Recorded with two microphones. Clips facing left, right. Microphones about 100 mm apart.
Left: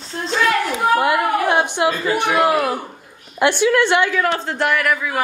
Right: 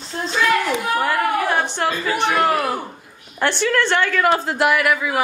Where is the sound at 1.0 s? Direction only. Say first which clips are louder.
Left 2 dB; 15° left (ahead or behind).